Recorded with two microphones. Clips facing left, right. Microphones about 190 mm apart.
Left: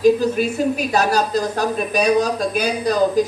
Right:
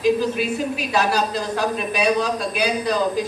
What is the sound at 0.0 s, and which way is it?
Speech, 45° left (ahead or behind).